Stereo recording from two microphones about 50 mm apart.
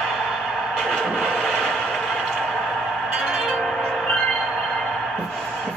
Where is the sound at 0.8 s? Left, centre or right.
Centre.